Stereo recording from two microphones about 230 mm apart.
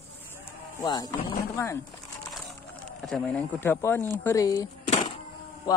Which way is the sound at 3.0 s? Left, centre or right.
Centre.